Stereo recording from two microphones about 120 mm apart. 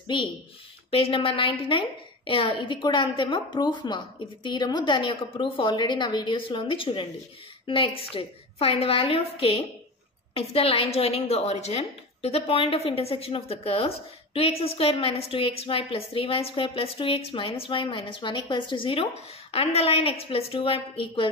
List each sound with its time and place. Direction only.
0.1 s a woman's voice: 45° left (ahead or behind)